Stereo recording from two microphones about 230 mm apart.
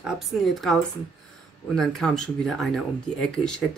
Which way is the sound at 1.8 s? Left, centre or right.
Centre.